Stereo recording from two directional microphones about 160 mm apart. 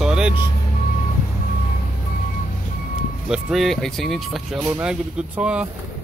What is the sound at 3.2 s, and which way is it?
Speech, centre (ahead or behind).